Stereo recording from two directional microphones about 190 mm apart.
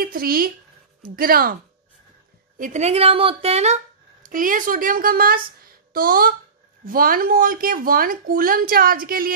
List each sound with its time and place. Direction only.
0.0 s speech: 50° right (ahead or behind)